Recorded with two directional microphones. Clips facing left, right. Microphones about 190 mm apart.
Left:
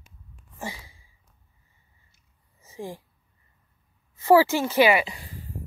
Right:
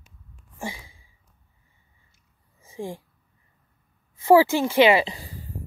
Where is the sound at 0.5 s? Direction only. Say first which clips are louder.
Right 2 dB; 15° right (ahead or behind).